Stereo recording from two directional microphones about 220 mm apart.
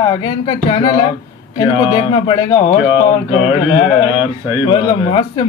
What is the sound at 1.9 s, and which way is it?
Speech, 20° left (ahead or behind).